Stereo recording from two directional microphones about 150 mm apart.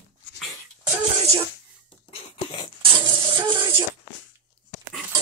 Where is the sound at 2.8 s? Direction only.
35° right (ahead or behind).